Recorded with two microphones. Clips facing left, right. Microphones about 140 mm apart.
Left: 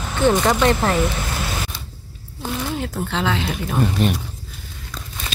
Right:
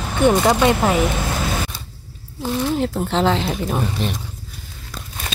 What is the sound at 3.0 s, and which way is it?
Speech, 35° right (ahead or behind).